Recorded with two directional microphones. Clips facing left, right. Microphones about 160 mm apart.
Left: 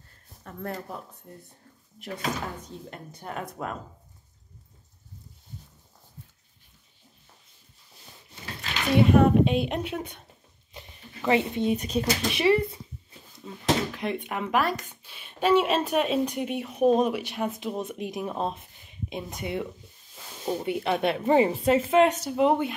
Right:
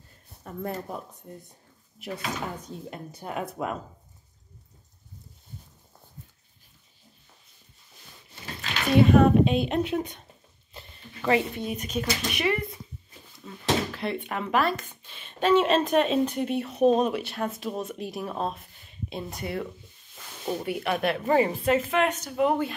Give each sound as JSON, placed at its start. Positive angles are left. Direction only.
{"t": 0.4, "sound": "speech", "side_deg": -10}
{"t": 2.9, "sound": "speech", "side_deg": -10}
{"t": 9.1, "sound": "a woman's voice", "side_deg": 10}
{"t": 13.5, "sound": "a woman's voice", "side_deg": 15}